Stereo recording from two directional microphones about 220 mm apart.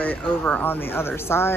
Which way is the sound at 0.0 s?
5° left (ahead or behind).